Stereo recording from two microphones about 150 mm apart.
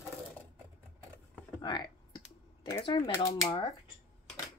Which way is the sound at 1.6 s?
30° left (ahead or behind).